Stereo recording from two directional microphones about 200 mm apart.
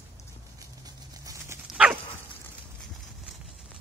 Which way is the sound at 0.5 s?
15° right (ahead or behind).